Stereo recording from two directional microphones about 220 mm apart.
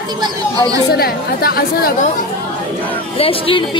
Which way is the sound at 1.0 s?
45° left (ahead or behind).